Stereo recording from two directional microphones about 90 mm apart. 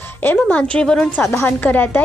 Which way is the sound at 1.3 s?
20° left (ahead or behind).